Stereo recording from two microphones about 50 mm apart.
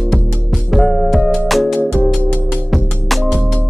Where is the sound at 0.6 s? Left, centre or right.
Centre.